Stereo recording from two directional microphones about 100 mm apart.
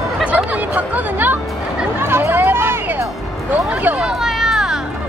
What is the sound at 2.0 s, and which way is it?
Music, 25° right (ahead or behind).